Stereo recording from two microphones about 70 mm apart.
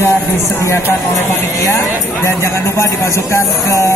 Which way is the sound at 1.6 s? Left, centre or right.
Left.